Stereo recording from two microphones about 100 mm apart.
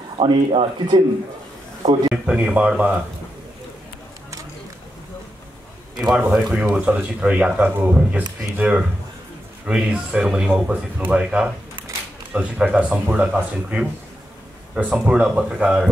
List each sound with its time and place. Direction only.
0.2 s speech: 60° right (ahead or behind)
2.2 s speech: 10° right (ahead or behind)
6.0 s speech: 5° right (ahead or behind)